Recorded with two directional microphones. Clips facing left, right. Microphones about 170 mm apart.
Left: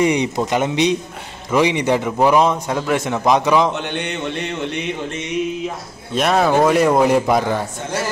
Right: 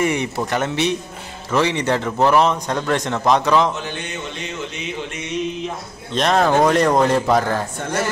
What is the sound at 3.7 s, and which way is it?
Music, 65° left (ahead or behind).